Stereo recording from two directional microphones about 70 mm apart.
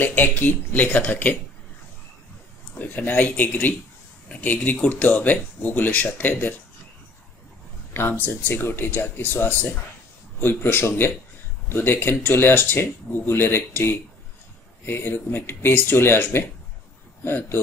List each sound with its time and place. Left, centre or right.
0.0 s speech: left
2.7 s speech: left
7.9 s a man's voice: left